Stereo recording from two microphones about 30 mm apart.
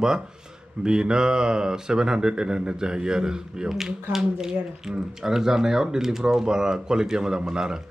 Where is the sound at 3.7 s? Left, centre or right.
Centre.